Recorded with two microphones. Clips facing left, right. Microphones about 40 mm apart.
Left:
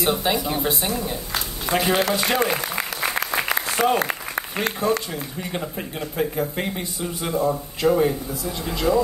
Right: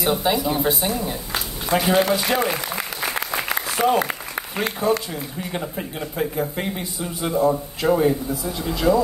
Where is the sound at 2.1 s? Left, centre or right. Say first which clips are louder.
Even; centre.